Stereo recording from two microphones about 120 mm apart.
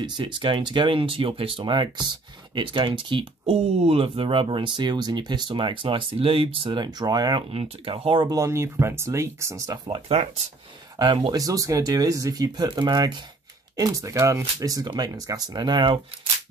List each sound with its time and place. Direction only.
0.0 s speech: 45° right (ahead or behind)
7.5 s speech: 50° right (ahead or behind)
8.4 s speech: 25° right (ahead or behind)
10.0 s speech: 65° right (ahead or behind)
11.0 s speech: 35° right (ahead or behind)